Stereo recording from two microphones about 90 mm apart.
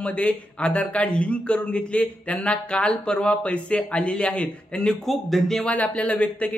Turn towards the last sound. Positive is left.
turn(degrees=15)  # may be behind; listen again after turning